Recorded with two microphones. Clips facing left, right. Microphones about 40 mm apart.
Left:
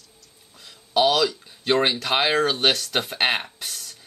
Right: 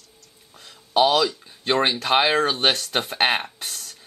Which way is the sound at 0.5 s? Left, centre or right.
Right.